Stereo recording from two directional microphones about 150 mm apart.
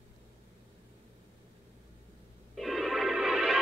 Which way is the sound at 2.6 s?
Centre (ahead or behind).